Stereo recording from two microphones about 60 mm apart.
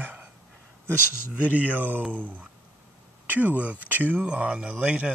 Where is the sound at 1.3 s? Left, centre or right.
Right.